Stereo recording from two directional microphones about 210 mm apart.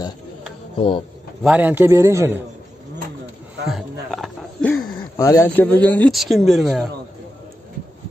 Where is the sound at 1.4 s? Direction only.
5° right (ahead or behind).